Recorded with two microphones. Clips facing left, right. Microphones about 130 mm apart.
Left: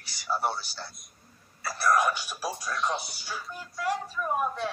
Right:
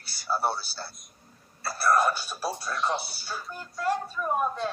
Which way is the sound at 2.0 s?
15° left (ahead or behind).